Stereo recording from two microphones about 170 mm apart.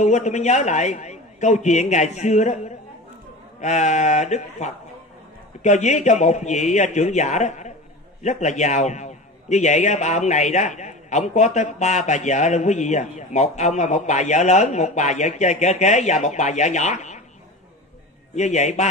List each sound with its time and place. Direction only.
0.0 s a man's voice: 45° left (ahead or behind)
18.3 s a man's voice: 45° left (ahead or behind)